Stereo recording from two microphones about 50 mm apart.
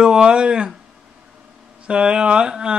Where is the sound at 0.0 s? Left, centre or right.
Centre.